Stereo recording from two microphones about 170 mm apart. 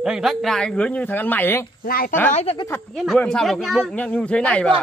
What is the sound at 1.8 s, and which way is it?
Speech, 60° left (ahead or behind).